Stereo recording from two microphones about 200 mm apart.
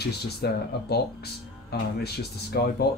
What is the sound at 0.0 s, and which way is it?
Speech, 55° left (ahead or behind).